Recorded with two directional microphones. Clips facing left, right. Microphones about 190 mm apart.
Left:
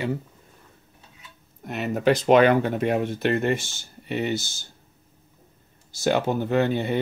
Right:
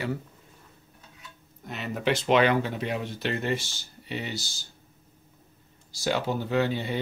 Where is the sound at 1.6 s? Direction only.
50° left (ahead or behind).